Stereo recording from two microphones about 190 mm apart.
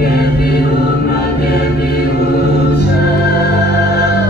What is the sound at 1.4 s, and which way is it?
Music, 55° left (ahead or behind).